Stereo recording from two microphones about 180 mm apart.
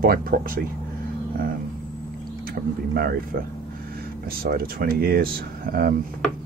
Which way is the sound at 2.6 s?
55° right (ahead or behind).